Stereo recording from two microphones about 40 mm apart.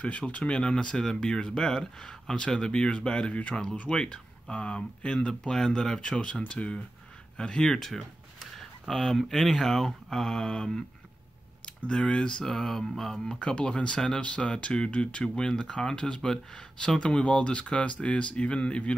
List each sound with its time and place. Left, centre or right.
0.3 s speech: left
8.5 s a sound: centre
9.3 s speech: centre
12.5 s speech: centre
13.4 s speech: left
14.2 s speech: left
15.2 s speech: centre